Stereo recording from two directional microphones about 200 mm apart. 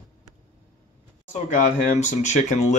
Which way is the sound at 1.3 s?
40° left (ahead or behind).